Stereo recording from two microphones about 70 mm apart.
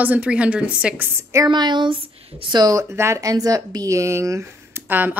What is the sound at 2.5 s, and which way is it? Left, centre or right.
Speech, right.